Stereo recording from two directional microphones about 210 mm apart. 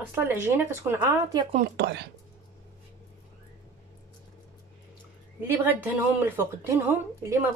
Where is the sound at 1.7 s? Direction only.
50° right (ahead or behind).